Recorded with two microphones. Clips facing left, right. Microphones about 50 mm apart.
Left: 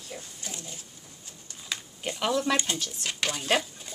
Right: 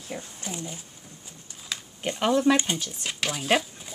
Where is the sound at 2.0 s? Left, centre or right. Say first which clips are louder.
Right 4 dB; right.